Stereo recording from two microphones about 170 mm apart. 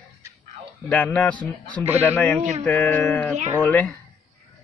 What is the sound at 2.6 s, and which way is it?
A man's voice, 10° left (ahead or behind).